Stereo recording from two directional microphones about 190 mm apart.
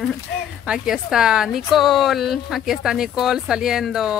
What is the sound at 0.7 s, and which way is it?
Speech, 5° right (ahead or behind).